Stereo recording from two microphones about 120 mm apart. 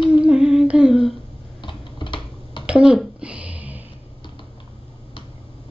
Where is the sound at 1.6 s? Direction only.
45° left (ahead or behind).